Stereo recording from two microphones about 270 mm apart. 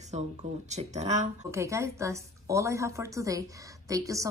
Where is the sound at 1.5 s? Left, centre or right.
Centre.